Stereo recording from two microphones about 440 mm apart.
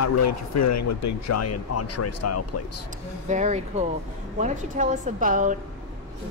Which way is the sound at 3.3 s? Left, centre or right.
Centre.